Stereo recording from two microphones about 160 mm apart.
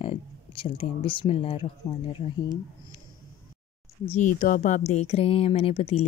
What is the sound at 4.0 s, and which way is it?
Speech, 45° left (ahead or behind).